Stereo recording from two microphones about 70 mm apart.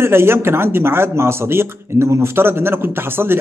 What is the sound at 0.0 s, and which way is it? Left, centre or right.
Speech, right.